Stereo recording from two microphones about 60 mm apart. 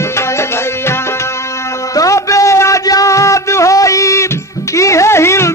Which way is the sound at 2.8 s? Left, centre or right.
Left.